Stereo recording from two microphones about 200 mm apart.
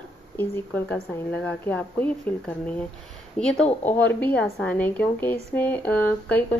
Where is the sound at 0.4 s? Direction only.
5° left (ahead or behind).